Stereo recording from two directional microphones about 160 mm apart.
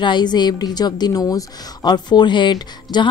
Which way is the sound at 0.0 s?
30° left (ahead or behind).